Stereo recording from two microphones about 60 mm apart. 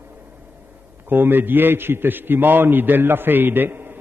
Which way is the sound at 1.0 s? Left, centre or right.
Right.